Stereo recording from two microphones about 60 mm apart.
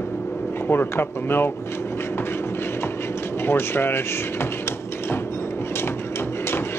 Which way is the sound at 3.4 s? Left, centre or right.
Left.